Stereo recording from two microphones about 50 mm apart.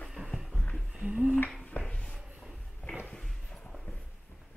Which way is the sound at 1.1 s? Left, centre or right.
Centre.